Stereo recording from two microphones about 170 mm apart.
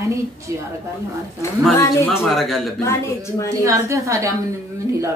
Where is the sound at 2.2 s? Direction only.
Centre (ahead or behind).